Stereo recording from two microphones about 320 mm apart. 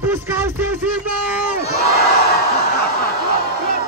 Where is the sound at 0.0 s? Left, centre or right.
Centre.